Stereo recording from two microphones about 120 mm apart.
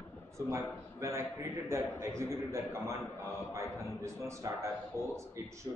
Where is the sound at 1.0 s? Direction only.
25° right (ahead or behind).